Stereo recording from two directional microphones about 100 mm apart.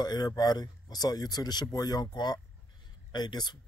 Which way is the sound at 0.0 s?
40° left (ahead or behind).